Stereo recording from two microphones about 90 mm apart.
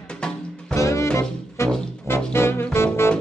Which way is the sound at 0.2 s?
10° left (ahead or behind).